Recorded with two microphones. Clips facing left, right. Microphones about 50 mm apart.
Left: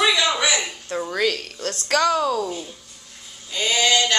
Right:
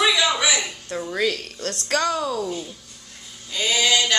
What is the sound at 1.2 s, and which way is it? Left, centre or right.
A man's voice, centre.